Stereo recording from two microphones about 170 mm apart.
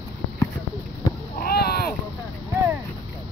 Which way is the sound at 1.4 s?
60° left (ahead or behind).